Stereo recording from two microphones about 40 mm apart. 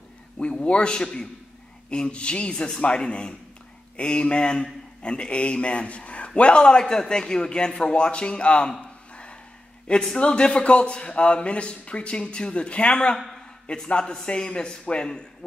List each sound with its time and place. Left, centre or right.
0.4 s a man's voice: left
10.1 s a man's voice: left